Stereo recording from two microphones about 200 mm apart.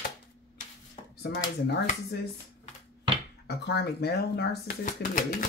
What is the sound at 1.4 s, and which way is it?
Speech, 45° left (ahead or behind).